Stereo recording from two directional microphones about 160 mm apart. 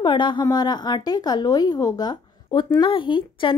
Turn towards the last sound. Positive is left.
turn(degrees=30)  # may be behind; listen again after turning